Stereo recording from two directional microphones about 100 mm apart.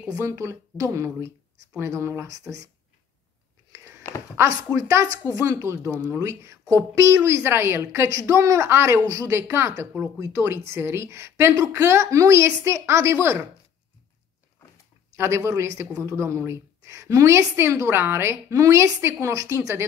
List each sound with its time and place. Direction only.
0.2 s speech: 30° right (ahead or behind)
4.4 s a woman's voice: 35° right (ahead or behind)
15.1 s a woman's voice: 25° right (ahead or behind)